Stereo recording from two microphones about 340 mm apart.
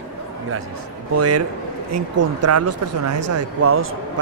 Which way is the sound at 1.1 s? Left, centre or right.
Right.